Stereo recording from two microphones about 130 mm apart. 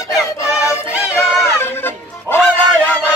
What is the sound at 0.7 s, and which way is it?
Music, 20° left (ahead or behind).